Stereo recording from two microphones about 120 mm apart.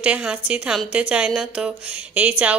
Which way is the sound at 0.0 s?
10° right (ahead or behind).